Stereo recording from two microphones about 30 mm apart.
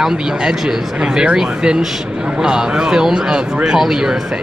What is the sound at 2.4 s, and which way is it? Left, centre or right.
Speech, right.